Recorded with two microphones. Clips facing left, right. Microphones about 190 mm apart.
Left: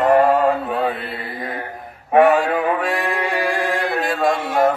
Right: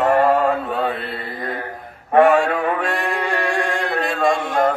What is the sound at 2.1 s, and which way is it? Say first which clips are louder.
Mantra: even; centre (ahead or behind).